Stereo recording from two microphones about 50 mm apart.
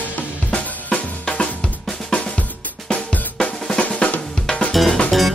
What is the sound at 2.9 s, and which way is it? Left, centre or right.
Drum, centre.